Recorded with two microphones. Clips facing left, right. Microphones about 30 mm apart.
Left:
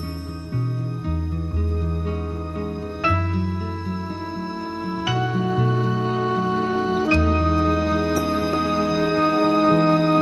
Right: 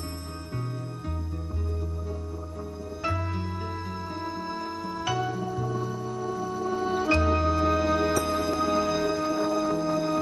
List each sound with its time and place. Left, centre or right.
4.8 s music: left
5.3 s music: left
6.8 s music: left
9.0 s music: left